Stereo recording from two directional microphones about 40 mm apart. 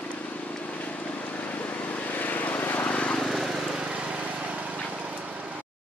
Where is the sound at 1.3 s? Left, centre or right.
Left.